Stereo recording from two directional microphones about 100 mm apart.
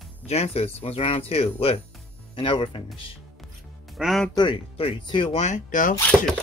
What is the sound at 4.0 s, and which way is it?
Speech, 10° right (ahead or behind).